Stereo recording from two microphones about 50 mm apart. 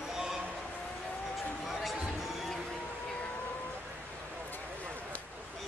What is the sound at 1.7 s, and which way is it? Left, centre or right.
Music, centre.